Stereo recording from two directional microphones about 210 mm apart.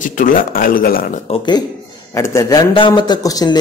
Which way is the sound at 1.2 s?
25° left (ahead or behind).